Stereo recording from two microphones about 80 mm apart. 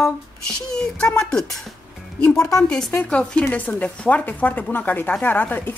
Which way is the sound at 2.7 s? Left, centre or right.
Centre.